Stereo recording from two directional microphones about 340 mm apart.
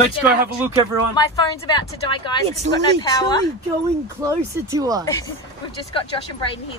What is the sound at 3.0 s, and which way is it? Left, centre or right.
Speech, centre.